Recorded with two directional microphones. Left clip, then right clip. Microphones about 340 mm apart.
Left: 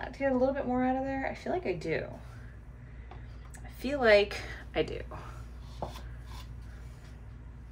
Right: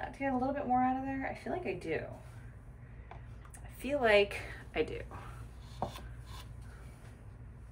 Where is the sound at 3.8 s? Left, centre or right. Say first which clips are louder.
Left 4 dB; centre.